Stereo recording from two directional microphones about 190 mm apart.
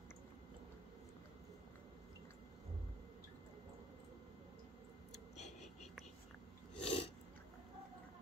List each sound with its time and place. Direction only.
6.8 s sneeze: 35° left (ahead or behind)